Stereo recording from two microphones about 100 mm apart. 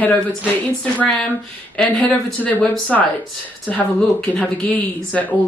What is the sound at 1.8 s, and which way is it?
Speech, 15° left (ahead or behind).